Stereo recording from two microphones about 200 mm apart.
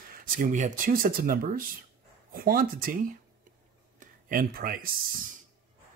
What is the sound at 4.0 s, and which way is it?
Speech, 45° right (ahead or behind).